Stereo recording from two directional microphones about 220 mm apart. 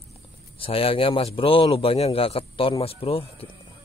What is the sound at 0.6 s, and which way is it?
Speech, 25° left (ahead or behind).